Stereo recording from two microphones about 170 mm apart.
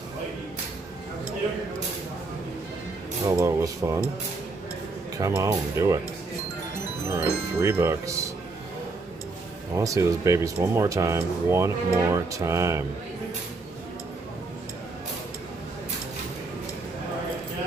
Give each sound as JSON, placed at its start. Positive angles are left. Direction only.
{"t": 3.3, "sound": "speech", "side_deg": -20}
{"t": 5.1, "sound": "speech", "side_deg": -20}
{"t": 7.1, "sound": "speech", "side_deg": -15}
{"t": 9.8, "sound": "speech", "side_deg": -20}